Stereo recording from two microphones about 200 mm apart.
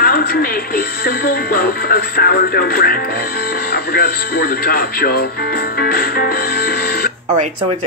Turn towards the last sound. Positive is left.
turn(degrees=50)  # may be behind; listen again after turning